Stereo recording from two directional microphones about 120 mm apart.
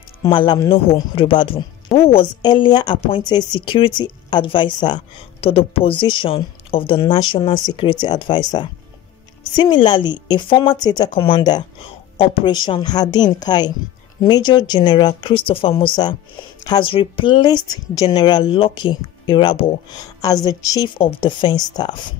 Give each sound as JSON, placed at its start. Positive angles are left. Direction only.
{"t": 0.3, "sound": "a woman's voice", "side_deg": 40}
{"t": 2.4, "sound": "a woman's voice", "side_deg": 40}
{"t": 5.4, "sound": "speech", "side_deg": 50}
{"t": 7.0, "sound": "a woman's voice", "side_deg": 35}
{"t": 11.8, "sound": "a woman's voice", "side_deg": 50}
{"t": 20.9, "sound": "a woman's voice", "side_deg": 45}